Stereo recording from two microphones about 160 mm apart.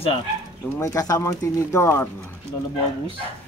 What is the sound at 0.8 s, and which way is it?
Speech, 20° left (ahead or behind).